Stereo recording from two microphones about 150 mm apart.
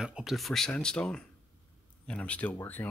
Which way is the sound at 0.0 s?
5° right (ahead or behind).